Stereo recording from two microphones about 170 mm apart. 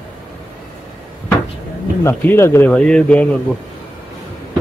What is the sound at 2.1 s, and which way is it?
Speech, 15° left (ahead or behind).